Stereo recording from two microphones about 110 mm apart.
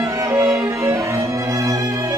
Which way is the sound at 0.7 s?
25° right (ahead or behind).